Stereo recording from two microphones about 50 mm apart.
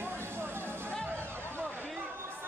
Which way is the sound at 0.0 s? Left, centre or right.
Right.